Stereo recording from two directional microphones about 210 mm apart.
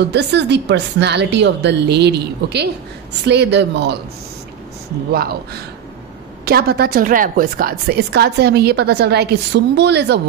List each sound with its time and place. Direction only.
0.1 s a woman's voice: 55° right (ahead or behind)
5.1 s a woman's voice: 50° right (ahead or behind)